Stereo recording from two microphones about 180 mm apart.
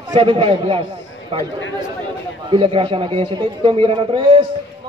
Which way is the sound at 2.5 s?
30° right (ahead or behind).